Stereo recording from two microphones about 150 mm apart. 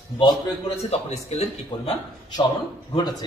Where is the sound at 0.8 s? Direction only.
45° left (ahead or behind).